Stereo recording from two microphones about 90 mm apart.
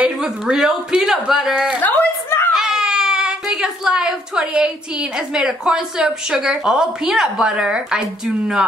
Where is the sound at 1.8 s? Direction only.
20° left (ahead or behind).